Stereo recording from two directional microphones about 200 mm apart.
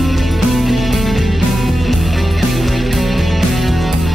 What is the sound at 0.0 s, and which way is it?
Music, centre (ahead or behind).